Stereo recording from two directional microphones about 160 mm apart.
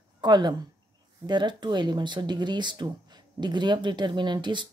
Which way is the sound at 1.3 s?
30° right (ahead or behind).